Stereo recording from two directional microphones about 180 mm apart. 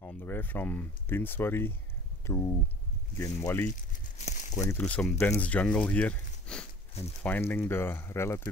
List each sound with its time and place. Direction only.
0.0 s speech: 10° left (ahead or behind)
4.2 s a sound: 40° left (ahead or behind)
4.6 s speech: 10° left (ahead or behind)